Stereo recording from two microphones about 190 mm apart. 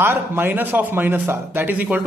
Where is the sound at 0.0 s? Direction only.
10° right (ahead or behind).